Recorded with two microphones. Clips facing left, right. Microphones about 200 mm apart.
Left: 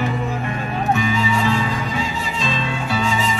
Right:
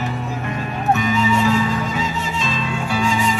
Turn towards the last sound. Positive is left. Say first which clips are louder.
# right 1 dB
turn(degrees=-10)  # may be behind; listen again after turning